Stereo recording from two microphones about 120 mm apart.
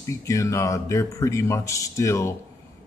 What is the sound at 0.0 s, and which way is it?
Speech, 25° left (ahead or behind).